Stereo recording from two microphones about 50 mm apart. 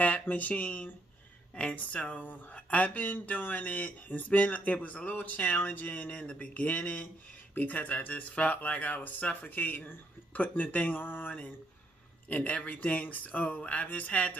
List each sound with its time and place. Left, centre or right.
0.0 s speech: left
1.5 s speech: left
11.0 s speech: left